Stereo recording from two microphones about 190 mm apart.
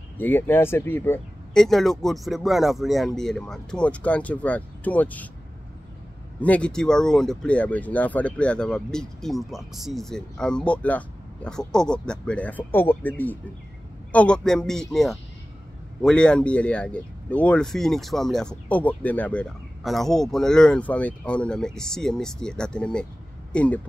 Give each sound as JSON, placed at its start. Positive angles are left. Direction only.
{"t": 0.2, "sound": "speech", "side_deg": 10}
{"t": 1.6, "sound": "speech", "side_deg": 0}
{"t": 6.4, "sound": "speech", "side_deg": 5}